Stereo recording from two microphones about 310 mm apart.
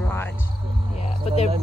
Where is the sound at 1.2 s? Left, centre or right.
Left.